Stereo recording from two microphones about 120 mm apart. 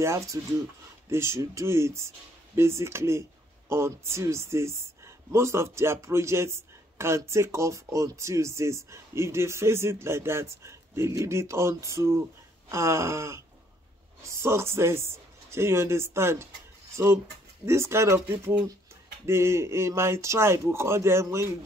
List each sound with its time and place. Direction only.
0.0 s speech: 25° right (ahead or behind)